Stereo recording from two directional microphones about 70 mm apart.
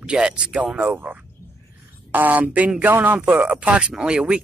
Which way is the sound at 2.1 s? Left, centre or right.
Right.